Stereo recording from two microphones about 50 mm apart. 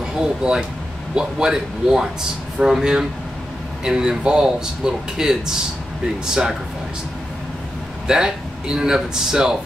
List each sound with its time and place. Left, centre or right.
0.0 s speech: centre
8.1 s speech: centre